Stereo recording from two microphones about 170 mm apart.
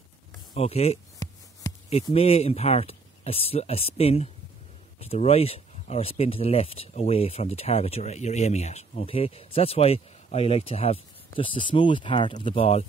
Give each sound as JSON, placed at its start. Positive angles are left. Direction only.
{"t": 0.6, "sound": "speech", "side_deg": 35}